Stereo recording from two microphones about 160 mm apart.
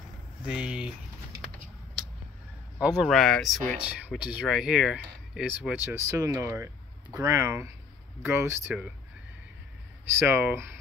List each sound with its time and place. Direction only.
0.5 s speech: 5° right (ahead or behind)
3.0 s speech: centre (ahead or behind)
10.1 s speech: 15° right (ahead or behind)